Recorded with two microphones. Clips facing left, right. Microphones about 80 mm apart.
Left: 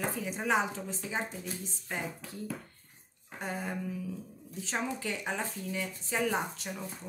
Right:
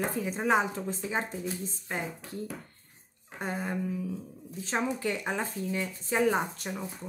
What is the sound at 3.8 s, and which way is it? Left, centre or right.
Speech, right.